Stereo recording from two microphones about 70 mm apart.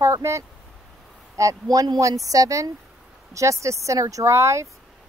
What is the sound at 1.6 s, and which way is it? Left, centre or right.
Speech, right.